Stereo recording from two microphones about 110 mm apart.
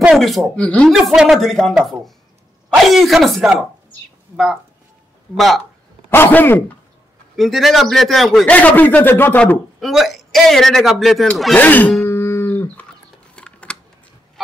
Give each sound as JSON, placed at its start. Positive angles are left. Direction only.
{"t": 0.1, "sound": "speech", "side_deg": 0}
{"t": 0.9, "sound": "speech", "side_deg": -5}
{"t": 5.3, "sound": "speech", "side_deg": 0}
{"t": 6.0, "sound": "speech", "side_deg": 20}
{"t": 7.3, "sound": "speech", "side_deg": 0}
{"t": 8.5, "sound": "a man's voice", "side_deg": 15}
{"t": 9.8, "sound": "speech", "side_deg": 0}
{"t": 11.5, "sound": "a man's voice", "side_deg": 15}
{"t": 12.0, "sound": "cattle", "side_deg": 20}
{"t": 13.4, "sound": "typing", "side_deg": 10}